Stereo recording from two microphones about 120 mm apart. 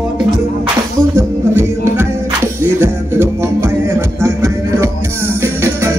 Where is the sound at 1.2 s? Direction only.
20° right (ahead or behind).